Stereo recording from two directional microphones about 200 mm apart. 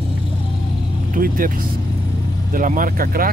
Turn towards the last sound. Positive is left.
turn(degrees=-45)  # may be behind; listen again after turning